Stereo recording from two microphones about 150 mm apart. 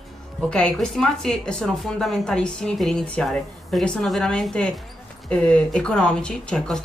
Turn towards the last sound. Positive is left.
turn(degrees=5)  # may be behind; listen again after turning